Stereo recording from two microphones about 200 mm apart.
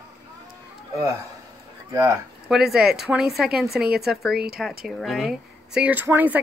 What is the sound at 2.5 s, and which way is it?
Speech, centre (ahead or behind).